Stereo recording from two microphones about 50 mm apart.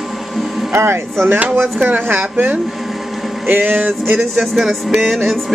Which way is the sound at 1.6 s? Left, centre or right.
Right.